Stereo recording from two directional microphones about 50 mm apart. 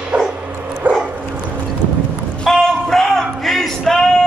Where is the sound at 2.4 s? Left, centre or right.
Centre.